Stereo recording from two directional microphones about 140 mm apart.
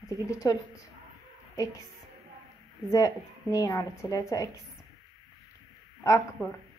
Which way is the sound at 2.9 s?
25° left (ahead or behind).